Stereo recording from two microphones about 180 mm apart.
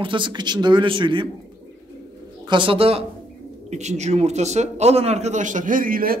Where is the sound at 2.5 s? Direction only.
30° right (ahead or behind).